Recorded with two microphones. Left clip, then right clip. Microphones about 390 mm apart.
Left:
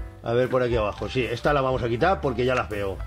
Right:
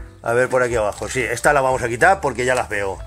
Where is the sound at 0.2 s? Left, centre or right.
Right.